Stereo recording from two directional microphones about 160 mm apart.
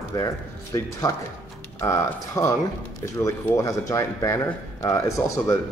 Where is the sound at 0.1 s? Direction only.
25° left (ahead or behind).